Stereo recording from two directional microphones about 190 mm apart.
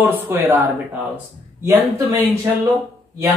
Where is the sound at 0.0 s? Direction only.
10° right (ahead or behind).